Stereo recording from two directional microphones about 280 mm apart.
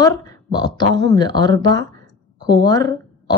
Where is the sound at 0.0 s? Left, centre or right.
Centre.